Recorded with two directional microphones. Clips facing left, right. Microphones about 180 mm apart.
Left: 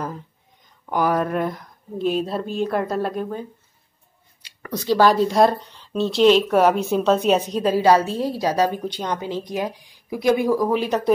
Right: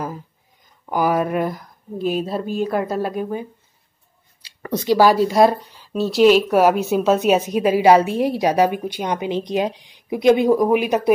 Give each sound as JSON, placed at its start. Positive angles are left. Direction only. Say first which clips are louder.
{"t": 0.8, "sound": "speech", "louder": "right 2 dB", "side_deg": -5}
{"t": 4.4, "sound": "a sound", "louder": "right 5 dB", "side_deg": -30}
{"t": 4.8, "sound": "speech", "louder": "right 2 dB", "side_deg": -10}